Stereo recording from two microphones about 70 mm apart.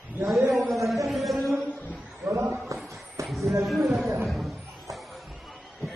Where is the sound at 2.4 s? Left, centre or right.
Right.